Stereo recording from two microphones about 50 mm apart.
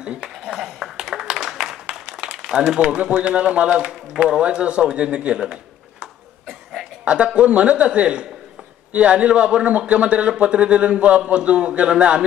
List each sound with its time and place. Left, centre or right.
0.0 s speech: right
0.4 s a sound: centre
2.8 s a man's voice: right
6.4 s cough: centre
7.3 s a man's voice: right